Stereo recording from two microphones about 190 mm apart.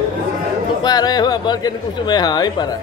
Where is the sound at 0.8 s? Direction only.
20° left (ahead or behind).